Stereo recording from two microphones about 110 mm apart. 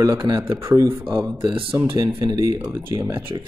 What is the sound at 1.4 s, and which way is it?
Speech, 50° right (ahead or behind).